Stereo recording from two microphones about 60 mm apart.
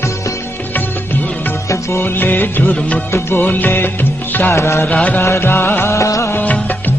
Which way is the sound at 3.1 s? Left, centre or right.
Left.